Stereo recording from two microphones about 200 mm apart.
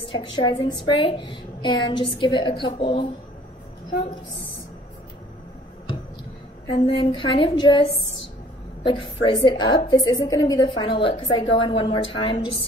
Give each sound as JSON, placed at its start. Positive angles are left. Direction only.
{"t": 0.1, "sound": "a woman's voice", "side_deg": 25}
{"t": 6.7, "sound": "a woman's voice", "side_deg": 25}